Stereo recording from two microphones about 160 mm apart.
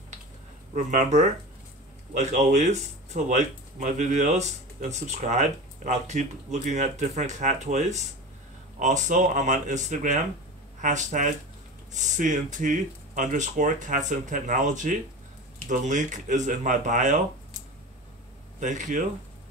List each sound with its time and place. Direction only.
2.1 s speech: 50° right (ahead or behind)
18.6 s speech: 50° right (ahead or behind)